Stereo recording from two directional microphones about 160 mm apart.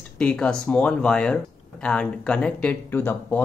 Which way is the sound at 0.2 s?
5° left (ahead or behind).